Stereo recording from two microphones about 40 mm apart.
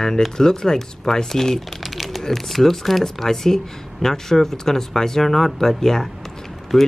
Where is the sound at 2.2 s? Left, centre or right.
Centre.